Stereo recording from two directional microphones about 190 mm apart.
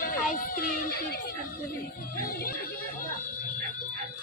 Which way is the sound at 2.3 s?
50° left (ahead or behind).